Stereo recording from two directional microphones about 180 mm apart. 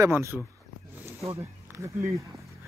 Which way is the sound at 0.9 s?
15° right (ahead or behind).